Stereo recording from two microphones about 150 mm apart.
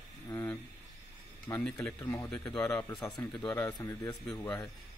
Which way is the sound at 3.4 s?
15° left (ahead or behind).